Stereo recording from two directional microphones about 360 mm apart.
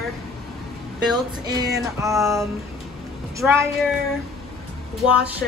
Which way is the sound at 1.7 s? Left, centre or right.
Centre.